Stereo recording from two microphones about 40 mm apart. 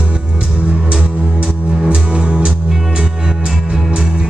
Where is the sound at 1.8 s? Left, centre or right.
Right.